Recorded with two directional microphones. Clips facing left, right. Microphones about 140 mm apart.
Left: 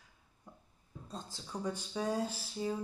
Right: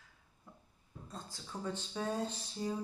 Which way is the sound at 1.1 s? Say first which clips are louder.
Left 3 dB; 15° left (ahead or behind).